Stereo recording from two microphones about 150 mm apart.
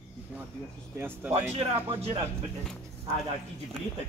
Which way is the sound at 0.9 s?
15° right (ahead or behind).